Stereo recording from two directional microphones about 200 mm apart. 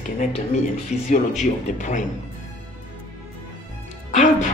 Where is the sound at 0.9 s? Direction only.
35° left (ahead or behind).